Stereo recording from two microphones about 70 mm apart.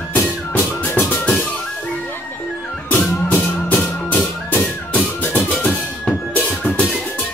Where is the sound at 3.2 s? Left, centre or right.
Left.